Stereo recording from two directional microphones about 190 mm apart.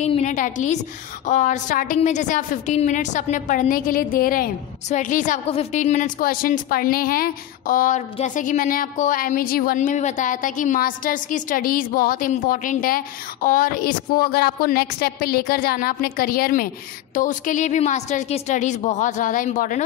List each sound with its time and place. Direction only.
0.0 s a woman's voice: 35° left (ahead or behind)